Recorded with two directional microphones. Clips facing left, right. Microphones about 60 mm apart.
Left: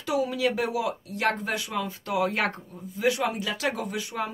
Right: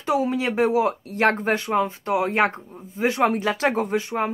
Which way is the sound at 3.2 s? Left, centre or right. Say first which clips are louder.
Right 8 dB; right.